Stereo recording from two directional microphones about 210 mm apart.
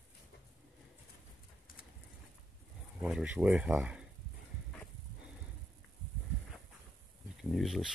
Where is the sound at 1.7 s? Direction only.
40° left (ahead or behind).